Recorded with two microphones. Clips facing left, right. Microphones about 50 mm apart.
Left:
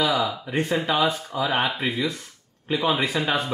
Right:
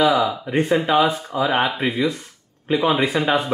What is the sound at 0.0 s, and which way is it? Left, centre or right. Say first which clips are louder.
Speech: right 6 dB; centre.